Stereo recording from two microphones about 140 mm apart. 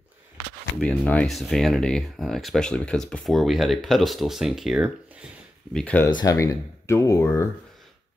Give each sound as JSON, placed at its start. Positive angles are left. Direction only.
{"t": 0.7, "sound": "speech", "side_deg": 10}
{"t": 5.7, "sound": "speech", "side_deg": 5}
{"t": 6.0, "sound": "speech", "side_deg": 25}